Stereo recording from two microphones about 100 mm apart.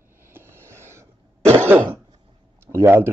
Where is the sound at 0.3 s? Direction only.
25° right (ahead or behind).